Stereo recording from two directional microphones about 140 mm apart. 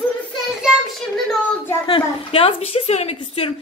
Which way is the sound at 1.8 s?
40° left (ahead or behind).